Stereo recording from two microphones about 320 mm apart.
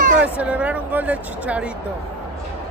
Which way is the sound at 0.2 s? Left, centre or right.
Centre.